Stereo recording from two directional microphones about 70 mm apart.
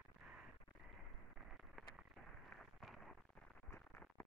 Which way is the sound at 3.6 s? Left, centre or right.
Left.